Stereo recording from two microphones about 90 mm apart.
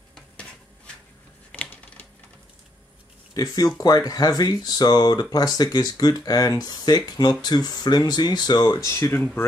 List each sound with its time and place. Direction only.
1.5 s typing: 10° left (ahead or behind)
3.3 s speech: 45° left (ahead or behind)
8.7 s speech: 35° left (ahead or behind)